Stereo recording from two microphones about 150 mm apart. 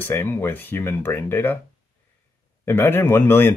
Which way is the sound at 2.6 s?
15° left (ahead or behind).